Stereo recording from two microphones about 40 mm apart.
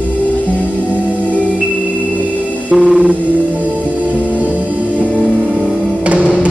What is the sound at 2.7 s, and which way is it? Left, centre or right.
Music, centre.